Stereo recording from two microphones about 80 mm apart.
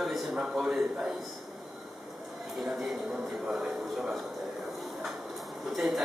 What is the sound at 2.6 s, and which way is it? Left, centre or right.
A man's voice, centre.